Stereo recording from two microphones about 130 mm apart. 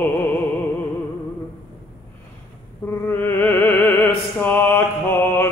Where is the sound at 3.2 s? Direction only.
15° left (ahead or behind).